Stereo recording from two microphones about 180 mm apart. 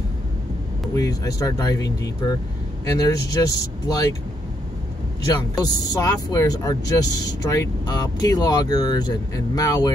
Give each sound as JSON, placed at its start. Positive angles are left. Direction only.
{"t": 0.9, "sound": "speech", "side_deg": 20}
{"t": 5.6, "sound": "speech", "side_deg": 20}